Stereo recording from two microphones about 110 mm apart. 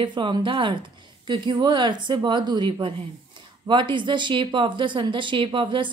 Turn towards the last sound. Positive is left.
turn(degrees=-50)  # may be behind; listen again after turning